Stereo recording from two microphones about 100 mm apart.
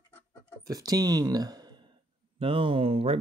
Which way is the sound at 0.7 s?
40° right (ahead or behind).